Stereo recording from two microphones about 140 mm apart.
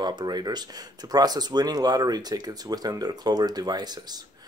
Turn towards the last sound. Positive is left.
turn(degrees=-30)  # may be behind; listen again after turning